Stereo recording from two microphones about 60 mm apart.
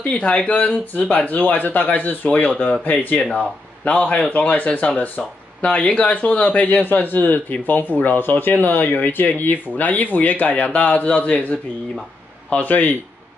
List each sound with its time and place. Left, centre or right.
0.1 s speech: centre
3.2 s speech: centre
3.8 s speech: left